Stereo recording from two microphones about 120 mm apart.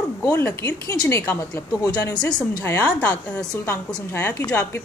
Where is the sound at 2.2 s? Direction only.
10° left (ahead or behind).